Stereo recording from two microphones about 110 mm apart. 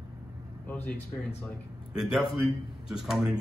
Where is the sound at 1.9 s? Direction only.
5° right (ahead or behind).